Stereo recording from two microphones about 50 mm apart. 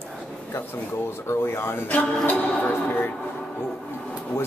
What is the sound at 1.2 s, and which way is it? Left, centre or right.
Speech, left.